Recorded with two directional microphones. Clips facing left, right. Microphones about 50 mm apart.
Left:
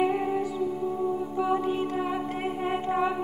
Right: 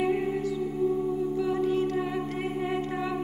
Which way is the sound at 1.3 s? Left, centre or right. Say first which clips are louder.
Even; left.